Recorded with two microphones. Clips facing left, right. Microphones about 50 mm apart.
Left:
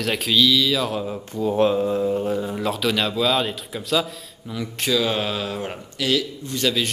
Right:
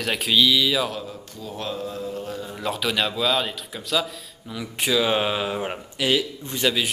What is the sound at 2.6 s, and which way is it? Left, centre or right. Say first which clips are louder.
A man's voice: left 2 dB; centre.